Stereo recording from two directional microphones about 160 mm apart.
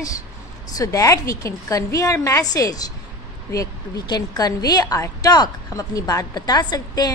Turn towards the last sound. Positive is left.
turn(degrees=25)  # may be behind; listen again after turning